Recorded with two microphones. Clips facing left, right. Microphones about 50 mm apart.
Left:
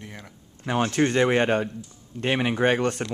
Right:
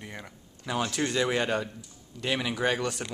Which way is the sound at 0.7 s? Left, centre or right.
Left.